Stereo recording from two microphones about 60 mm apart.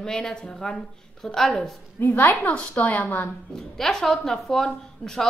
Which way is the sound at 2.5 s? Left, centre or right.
Left.